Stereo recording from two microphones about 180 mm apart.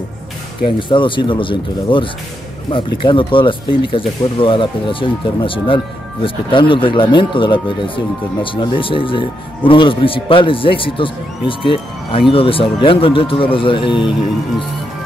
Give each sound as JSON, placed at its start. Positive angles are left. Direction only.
{"t": 0.7, "sound": "speech", "side_deg": 25}